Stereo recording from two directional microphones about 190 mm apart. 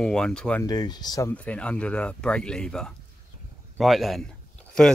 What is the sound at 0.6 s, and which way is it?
Speech, 20° left (ahead or behind).